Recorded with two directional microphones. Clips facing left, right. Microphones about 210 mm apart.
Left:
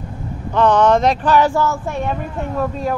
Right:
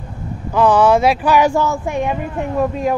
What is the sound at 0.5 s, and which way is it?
Speech, 10° right (ahead or behind).